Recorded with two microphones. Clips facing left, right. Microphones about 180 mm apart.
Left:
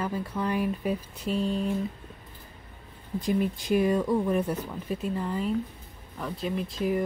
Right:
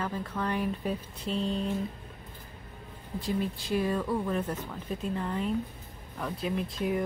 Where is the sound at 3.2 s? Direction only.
15° left (ahead or behind).